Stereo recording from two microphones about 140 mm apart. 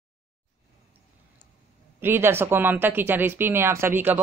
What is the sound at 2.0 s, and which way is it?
Speech, 15° right (ahead or behind).